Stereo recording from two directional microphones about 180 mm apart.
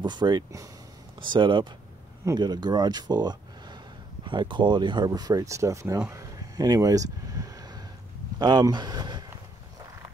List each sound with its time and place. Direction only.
0.0 s speech: 25° right (ahead or behind)